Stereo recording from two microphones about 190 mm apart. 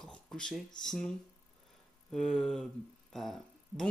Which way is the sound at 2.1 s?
Centre (ahead or behind).